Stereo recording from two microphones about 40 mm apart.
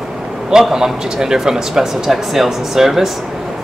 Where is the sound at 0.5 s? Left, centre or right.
Centre.